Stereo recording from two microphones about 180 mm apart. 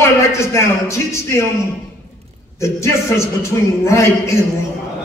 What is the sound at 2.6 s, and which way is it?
A man's voice, 15° left (ahead or behind).